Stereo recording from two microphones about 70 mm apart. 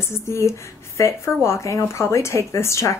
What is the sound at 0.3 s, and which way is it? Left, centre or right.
A woman's voice, left.